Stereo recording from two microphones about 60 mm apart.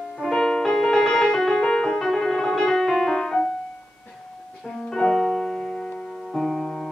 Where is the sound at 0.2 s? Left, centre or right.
Centre.